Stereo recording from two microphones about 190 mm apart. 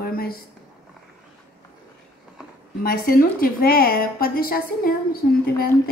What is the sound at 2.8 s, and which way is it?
A woman's voice, 50° left (ahead or behind).